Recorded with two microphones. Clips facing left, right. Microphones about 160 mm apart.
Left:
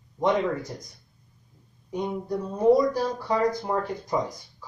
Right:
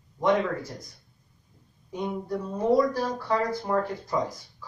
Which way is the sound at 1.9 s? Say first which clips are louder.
Left 2 dB; 15° left (ahead or behind).